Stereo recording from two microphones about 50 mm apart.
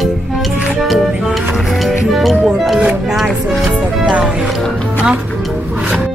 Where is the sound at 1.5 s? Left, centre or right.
Centre.